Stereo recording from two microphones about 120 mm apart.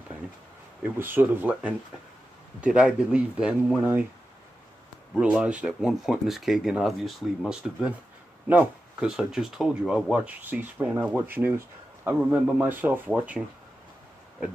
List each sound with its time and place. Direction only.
0.8 s speech: 15° right (ahead or behind)
5.1 s speech: 5° right (ahead or behind)
10.1 s speech: 15° right (ahead or behind)